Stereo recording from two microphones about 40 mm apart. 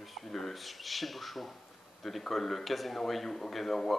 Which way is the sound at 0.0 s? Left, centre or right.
Centre.